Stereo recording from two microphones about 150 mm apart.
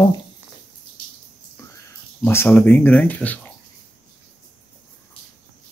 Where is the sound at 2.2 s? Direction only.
15° left (ahead or behind).